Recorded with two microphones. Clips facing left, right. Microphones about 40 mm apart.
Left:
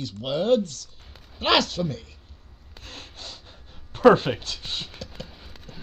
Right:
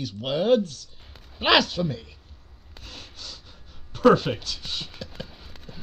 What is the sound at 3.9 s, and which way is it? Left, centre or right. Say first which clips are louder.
Speech: left 2 dB; left.